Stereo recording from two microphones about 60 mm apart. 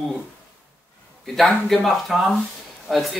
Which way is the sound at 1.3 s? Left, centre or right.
Centre.